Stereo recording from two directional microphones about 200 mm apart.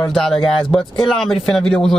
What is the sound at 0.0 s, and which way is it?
Speech, centre (ahead or behind).